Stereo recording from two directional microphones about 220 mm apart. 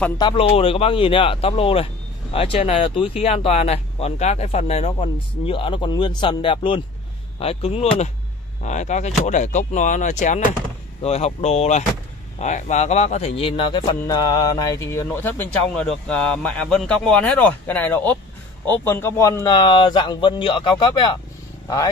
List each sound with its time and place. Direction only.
0.2 s a man's voice: 25° left (ahead or behind)